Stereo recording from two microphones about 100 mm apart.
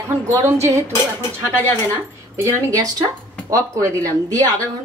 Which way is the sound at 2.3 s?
25° right (ahead or behind).